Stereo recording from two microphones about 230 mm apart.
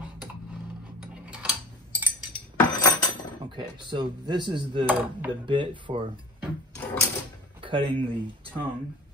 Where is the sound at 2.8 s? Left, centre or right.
Centre.